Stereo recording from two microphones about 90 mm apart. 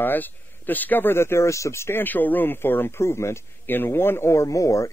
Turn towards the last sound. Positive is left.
turn(degrees=40)  # may be behind; listen again after turning